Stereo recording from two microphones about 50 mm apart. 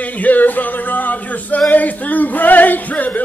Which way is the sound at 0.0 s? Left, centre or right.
Left.